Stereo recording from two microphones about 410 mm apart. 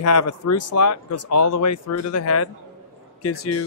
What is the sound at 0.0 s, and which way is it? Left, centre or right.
Speech, left.